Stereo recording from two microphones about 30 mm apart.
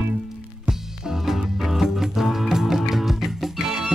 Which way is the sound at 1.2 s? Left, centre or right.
Centre.